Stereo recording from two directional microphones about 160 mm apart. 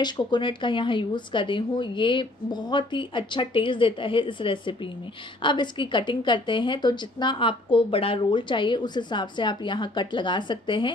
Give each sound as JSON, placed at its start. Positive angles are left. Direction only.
{"t": 0.0, "sound": "speech", "side_deg": 30}